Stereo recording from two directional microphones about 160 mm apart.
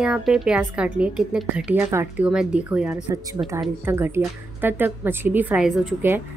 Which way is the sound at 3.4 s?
20° right (ahead or behind).